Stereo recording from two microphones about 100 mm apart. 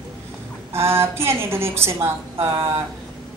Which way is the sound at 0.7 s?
25° right (ahead or behind).